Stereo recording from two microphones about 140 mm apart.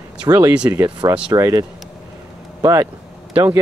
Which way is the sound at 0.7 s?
25° right (ahead or behind).